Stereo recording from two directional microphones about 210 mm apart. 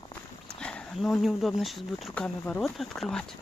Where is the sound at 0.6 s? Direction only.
Centre (ahead or behind).